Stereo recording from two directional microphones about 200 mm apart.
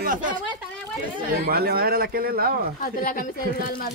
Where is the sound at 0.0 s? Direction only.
45° right (ahead or behind).